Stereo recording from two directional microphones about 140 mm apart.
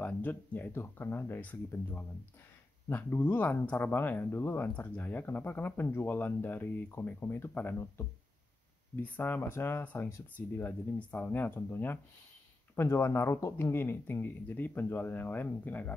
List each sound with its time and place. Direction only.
0.0 s speech: 10° left (ahead or behind)